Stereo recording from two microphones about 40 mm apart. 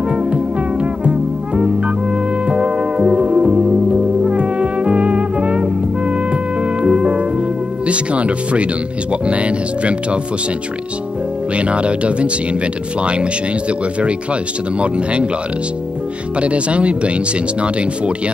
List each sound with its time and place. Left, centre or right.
0.1 s music: right
2.4 s music: right
9.1 s speech: right
11.5 s speech: right
16.3 s speech: right